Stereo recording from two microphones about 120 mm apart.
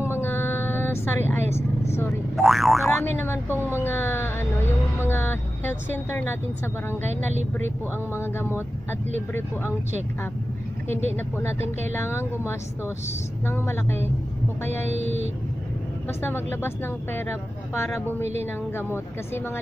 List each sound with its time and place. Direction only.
0.0 s a sound: 20° left (ahead or behind)
2.3 s boing: centre (ahead or behind)
2.9 s speech: 20° left (ahead or behind)
8.1 s speech: 20° left (ahead or behind)
11.9 s speech: 20° left (ahead or behind)
14.9 s speech: 70° right (ahead or behind)
16.2 s speech: 20° left (ahead or behind)
18.2 s speech: 65° right (ahead or behind)
18.8 s speech: 20° left (ahead or behind)